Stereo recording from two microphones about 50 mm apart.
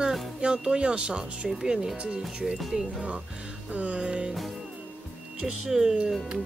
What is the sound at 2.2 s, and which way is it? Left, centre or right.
Speech, centre.